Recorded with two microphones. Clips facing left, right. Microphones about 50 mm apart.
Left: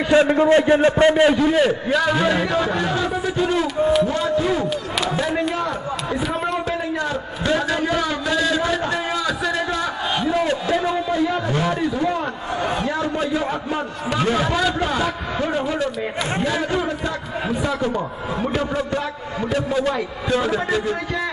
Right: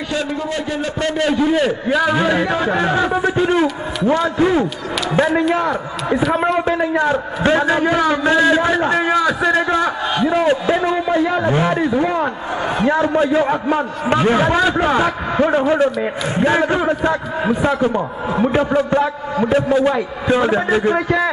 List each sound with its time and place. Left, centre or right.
0.1 s a man's voice: left
1.4 s a man's voice: centre; by 3.6 s right
3.6 s a man's voice: centre
6.8 s a man's voice: right
10.3 s a sound: right
11.4 s a man's voice: right